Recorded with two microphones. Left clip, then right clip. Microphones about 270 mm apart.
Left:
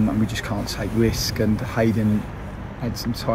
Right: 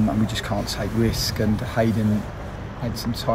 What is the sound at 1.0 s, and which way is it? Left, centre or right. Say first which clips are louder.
Speech: left 3 dB; centre.